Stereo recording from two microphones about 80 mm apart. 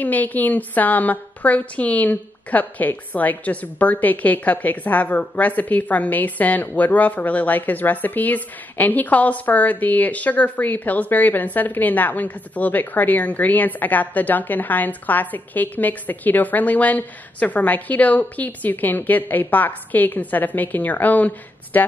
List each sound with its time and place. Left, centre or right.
0.0 s a woman's voice: left